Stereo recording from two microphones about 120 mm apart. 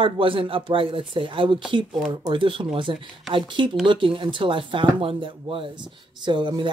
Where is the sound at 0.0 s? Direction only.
45° right (ahead or behind).